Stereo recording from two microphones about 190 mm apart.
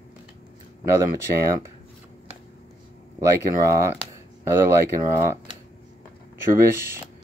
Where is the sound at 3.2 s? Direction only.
15° right (ahead or behind).